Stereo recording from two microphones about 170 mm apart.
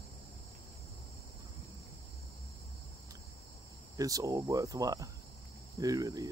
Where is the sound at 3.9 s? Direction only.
20° right (ahead or behind).